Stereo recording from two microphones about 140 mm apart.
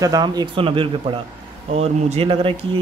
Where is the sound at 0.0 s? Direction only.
25° right (ahead or behind).